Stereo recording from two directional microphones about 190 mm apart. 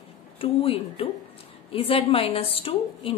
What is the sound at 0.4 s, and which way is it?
A woman's voice, 30° left (ahead or behind).